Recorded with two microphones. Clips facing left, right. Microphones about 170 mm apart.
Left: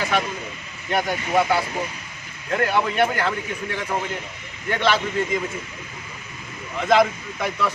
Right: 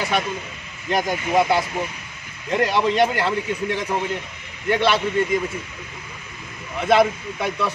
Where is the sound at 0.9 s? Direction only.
15° right (ahead or behind).